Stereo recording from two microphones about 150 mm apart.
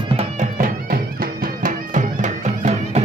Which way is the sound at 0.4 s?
65° right (ahead or behind).